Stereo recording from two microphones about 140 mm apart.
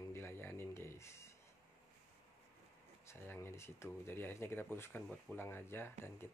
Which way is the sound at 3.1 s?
15° left (ahead or behind).